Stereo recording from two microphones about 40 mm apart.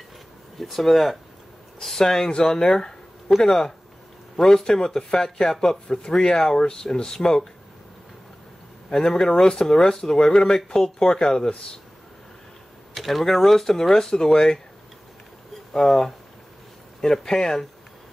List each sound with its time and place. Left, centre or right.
0.6 s speech: centre
8.9 s speech: centre
12.9 s speech: centre
15.7 s speech: centre